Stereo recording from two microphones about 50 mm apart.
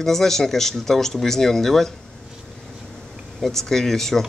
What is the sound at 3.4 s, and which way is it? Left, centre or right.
Speech, centre.